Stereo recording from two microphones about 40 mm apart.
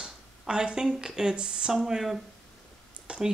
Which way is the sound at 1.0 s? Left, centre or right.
Centre.